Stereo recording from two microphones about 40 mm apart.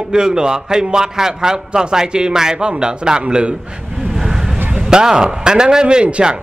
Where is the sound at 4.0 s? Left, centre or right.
Centre.